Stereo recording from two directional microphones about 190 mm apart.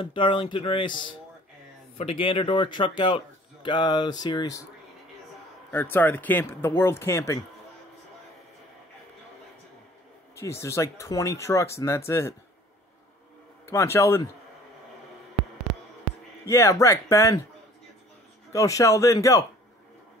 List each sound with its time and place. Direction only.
0.0 s a man's voice: 25° left (ahead or behind)
5.7 s speech: 10° left (ahead or behind)
10.3 s speech: 15° left (ahead or behind)
13.7 s speech: 15° left (ahead or behind)
16.4 s speech: 15° left (ahead or behind)
18.5 s speech: 15° left (ahead or behind)